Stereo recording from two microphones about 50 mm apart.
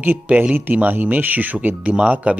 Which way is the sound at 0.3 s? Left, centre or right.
Right.